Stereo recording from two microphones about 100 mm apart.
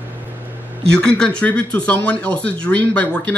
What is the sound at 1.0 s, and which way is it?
Speech, 10° left (ahead or behind).